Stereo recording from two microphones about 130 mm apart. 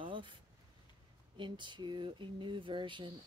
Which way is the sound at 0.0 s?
40° right (ahead or behind).